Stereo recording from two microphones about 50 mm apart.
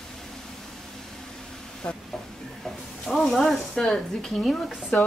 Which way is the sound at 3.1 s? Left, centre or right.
Centre.